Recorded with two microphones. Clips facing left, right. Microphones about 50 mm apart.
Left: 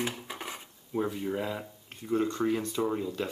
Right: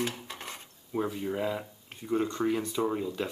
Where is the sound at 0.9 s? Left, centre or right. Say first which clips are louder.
Even; centre.